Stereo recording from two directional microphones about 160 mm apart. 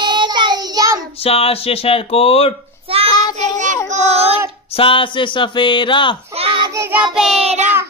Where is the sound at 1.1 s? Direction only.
35° left (ahead or behind).